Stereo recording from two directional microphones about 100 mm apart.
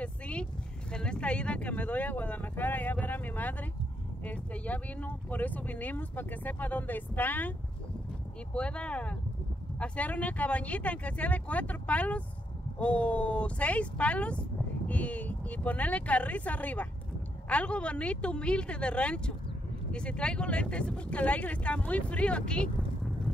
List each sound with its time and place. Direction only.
0.0 s vehicle: 10° left (ahead or behind)
4.2 s speech: 15° left (ahead or behind)
8.5 s speech: 10° left (ahead or behind)